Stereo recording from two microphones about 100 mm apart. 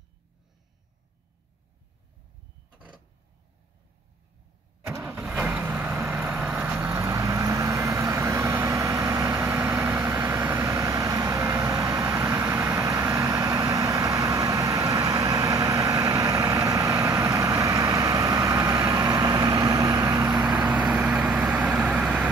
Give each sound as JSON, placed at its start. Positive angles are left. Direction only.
{"t": 4.8, "sound": "vehicle", "side_deg": -25}
{"t": 5.7, "sound": "vehicle", "side_deg": -15}
{"t": 6.7, "sound": "vehicle", "side_deg": -25}
{"t": 20.6, "sound": "vehicle", "side_deg": -15}